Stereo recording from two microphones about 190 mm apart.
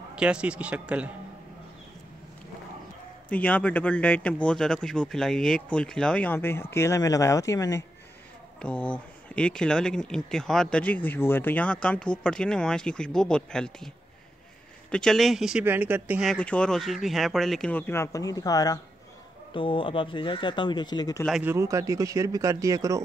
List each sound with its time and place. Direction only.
0.1 s speech: 5° right (ahead or behind)
3.3 s speech: 10° left (ahead or behind)
8.5 s speech: 5° left (ahead or behind)
14.9 s speech: 5° left (ahead or behind); by 21.2 s 20° left (ahead or behind)
21.4 s speech: 15° right (ahead or behind)